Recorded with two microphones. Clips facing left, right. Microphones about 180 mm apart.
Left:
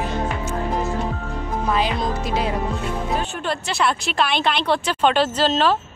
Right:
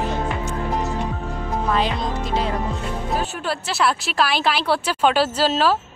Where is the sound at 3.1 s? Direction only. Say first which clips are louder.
Right 2 dB; 5° right (ahead or behind).